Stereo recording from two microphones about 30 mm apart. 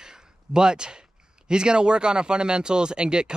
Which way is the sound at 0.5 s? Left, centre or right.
Right.